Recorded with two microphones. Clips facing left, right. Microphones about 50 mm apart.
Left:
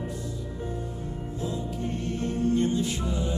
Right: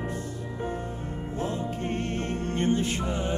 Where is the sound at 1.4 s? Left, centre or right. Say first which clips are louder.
Right 2 dB; right.